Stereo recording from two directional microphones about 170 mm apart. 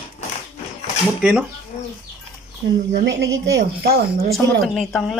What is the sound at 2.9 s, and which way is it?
Speech, 80° right.